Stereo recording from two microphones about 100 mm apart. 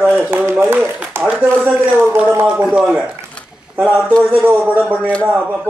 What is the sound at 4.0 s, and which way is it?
A man's voice, 5° left (ahead or behind).